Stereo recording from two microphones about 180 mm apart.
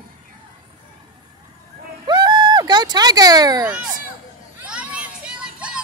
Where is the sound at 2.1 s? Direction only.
25° right (ahead or behind).